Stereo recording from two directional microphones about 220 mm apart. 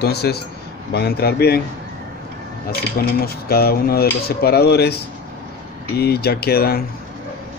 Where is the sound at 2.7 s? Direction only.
45° left (ahead or behind).